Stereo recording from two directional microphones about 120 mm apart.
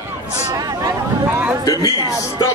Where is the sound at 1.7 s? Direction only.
30° left (ahead or behind).